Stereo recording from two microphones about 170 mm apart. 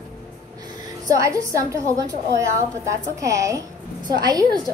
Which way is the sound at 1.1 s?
20° right (ahead or behind).